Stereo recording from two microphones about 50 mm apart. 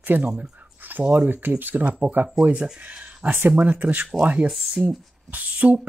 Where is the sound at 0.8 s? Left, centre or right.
Right.